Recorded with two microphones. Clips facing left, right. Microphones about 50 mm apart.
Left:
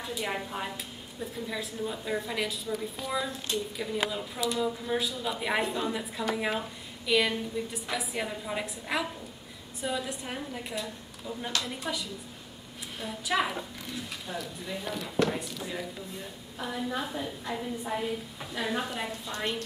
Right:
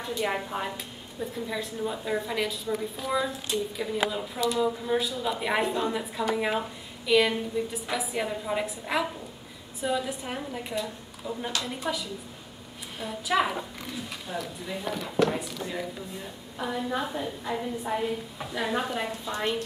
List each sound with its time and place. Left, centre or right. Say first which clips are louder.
0.0 s a woman's voice: right 4 dB; centre